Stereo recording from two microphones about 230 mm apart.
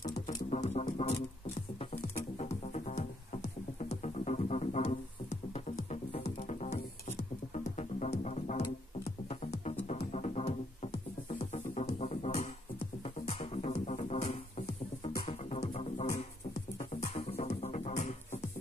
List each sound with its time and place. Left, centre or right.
0.0 s music: left
2.3 s music: left